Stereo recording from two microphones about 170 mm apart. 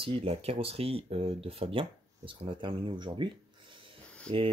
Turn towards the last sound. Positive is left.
turn(degrees=-35)  # may be behind; listen again after turning